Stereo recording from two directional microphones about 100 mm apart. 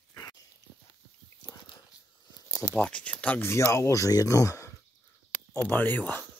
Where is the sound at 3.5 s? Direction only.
25° left (ahead or behind).